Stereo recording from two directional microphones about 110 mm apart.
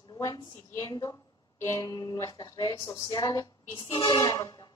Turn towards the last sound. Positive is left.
turn(degrees=35)  # may be behind; listen again after turning